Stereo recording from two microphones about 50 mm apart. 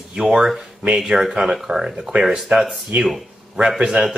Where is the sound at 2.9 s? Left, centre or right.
Right.